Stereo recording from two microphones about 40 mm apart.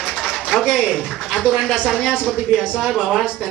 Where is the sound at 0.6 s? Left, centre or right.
Centre.